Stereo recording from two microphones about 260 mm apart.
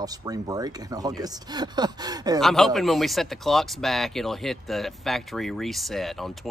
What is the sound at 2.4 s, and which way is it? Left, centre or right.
Speech, centre.